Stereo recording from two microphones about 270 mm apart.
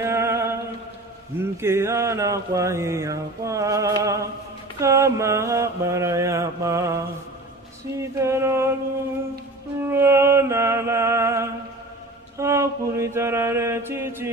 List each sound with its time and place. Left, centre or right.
0.0 s chant: centre
1.4 s mantra: centre
9.8 s a sound: centre
12.4 s mantra: centre